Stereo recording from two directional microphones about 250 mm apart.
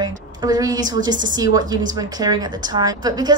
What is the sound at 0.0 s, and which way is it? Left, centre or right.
A woman's voice, centre.